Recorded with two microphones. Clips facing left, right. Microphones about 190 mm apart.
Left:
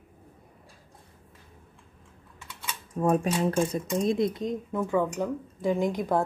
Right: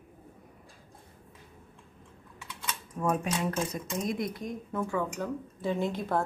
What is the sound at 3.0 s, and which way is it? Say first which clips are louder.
Speech: left 5 dB; 30° left (ahead or behind).